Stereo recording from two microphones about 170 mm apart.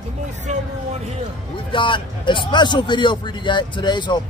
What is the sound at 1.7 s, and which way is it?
A man's voice, 30° left (ahead or behind).